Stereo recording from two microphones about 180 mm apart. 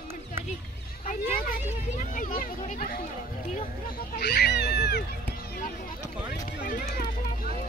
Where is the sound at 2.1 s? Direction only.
50° left (ahead or behind).